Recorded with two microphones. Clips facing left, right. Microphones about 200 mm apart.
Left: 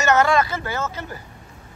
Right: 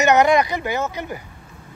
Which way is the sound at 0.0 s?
15° right (ahead or behind).